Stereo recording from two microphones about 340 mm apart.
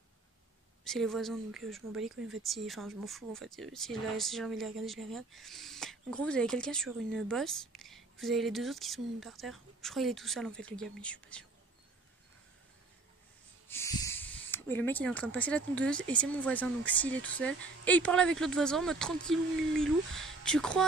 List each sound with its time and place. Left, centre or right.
0.8 s speech: centre
2.1 s speech: right
2.4 s speech: centre
13.7 s speech: centre